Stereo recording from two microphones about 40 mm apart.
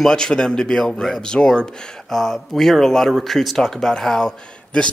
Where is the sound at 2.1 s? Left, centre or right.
Centre.